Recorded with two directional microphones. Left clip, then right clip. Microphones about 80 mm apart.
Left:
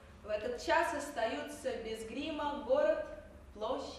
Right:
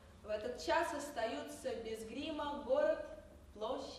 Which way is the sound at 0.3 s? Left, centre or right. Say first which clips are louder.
Left 4 dB; right.